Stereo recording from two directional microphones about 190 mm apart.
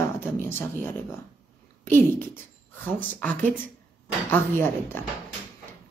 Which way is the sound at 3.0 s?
5° left (ahead or behind).